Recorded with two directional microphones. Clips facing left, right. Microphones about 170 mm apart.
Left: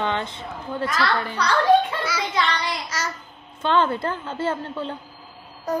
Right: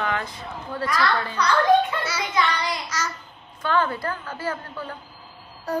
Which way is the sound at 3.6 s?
25° left (ahead or behind).